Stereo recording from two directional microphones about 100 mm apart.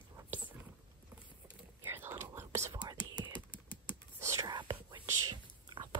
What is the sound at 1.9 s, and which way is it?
Whispering, 25° right (ahead or behind).